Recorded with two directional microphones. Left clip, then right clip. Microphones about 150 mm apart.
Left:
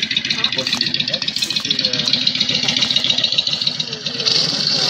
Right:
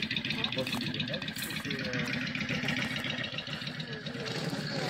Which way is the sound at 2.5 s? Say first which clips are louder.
Left 17 dB; 25° left (ahead or behind).